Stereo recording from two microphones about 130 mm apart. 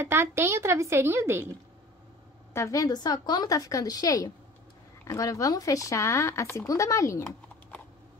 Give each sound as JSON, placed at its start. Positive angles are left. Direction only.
{"t": 0.0, "sound": "a woman's voice", "side_deg": -15}
{"t": 2.5, "sound": "speech", "side_deg": 25}